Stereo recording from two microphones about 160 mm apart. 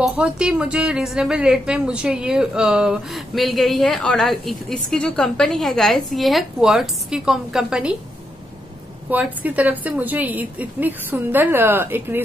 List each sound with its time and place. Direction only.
0.0 s a woman's voice: 5° right (ahead or behind)
9.1 s a woman's voice: 10° right (ahead or behind)